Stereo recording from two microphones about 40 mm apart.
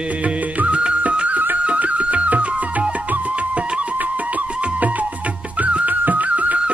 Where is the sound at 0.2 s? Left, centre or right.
Right.